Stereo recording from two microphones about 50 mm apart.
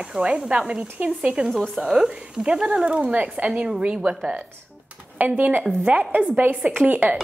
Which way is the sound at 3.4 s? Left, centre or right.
Centre.